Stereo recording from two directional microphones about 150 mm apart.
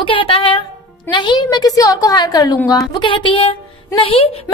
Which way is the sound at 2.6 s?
25° left (ahead or behind).